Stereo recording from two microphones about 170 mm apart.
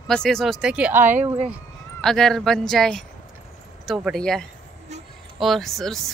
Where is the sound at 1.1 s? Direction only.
40° right (ahead or behind).